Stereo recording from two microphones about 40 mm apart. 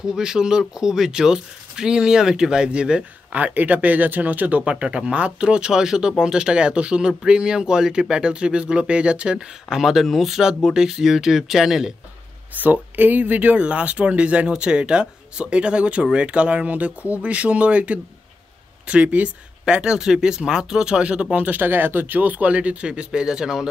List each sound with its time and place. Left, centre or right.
0.0 s speech: centre
3.3 s speech: right
9.8 s speech: centre
10.4 s speech: centre
12.5 s speech: right
19.6 s speech: centre
21.4 s speech: right
22.5 s speech: right; by 23.7 s centre